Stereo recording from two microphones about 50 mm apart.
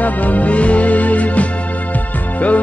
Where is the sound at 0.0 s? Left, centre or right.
Left.